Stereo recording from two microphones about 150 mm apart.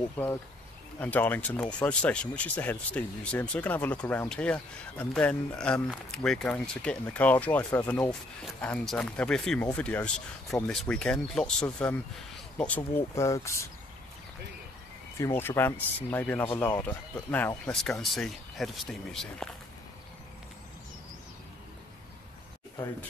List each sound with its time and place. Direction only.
0.9 s speech: 10° left (ahead or behind)
13.1 s speech: 20° left (ahead or behind)
15.1 s speech: 15° left (ahead or behind)